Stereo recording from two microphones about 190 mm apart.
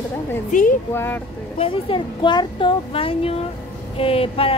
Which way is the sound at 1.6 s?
25° left (ahead or behind).